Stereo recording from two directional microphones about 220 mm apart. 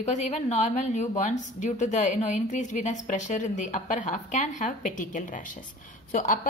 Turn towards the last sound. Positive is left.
turn(degrees=35)  # may be behind; listen again after turning